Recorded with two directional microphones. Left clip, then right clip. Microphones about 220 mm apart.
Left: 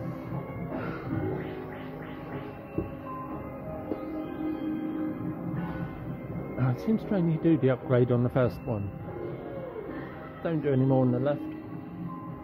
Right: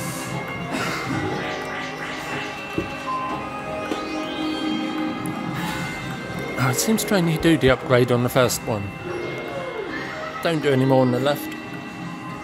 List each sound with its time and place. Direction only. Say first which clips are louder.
6.6 s speech: right 9 dB; 10° right (ahead or behind)
10.4 s speech: right 7 dB; 10° right (ahead or behind)